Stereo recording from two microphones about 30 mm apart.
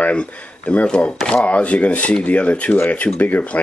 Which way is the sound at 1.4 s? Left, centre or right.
Left.